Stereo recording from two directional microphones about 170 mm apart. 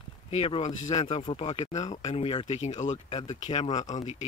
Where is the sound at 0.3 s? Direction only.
40° left (ahead or behind).